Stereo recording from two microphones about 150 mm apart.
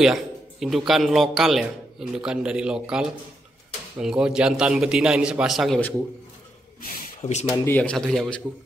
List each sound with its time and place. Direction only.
0.0 s speech: centre (ahead or behind)
5.8 s speech: 10° left (ahead or behind)
7.2 s speech: 50° left (ahead or behind)
7.4 s speech: 25° left (ahead or behind)
7.7 s speech: 5° left (ahead or behind)